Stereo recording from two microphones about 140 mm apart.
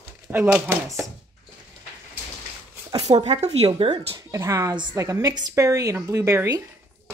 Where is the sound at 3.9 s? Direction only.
30° right (ahead or behind).